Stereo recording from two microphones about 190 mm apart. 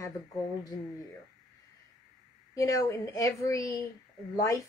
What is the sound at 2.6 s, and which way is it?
Speech, 15° left (ahead or behind).